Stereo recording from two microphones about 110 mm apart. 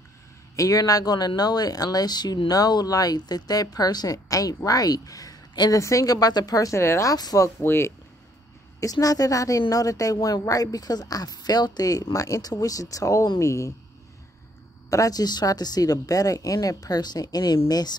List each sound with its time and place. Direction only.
0.6 s speech: 35° left (ahead or behind)
14.9 s speech: 30° left (ahead or behind)